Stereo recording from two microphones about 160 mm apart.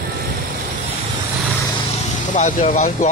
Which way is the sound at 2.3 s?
50° left (ahead or behind).